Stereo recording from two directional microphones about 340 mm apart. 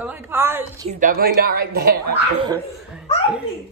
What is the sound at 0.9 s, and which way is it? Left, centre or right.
A woman's voice, right.